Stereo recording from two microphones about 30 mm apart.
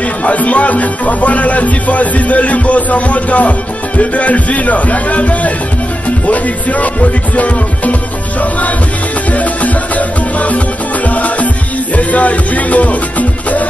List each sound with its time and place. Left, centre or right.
0.2 s speech: left
9.3 s music: left
12.0 s speech: left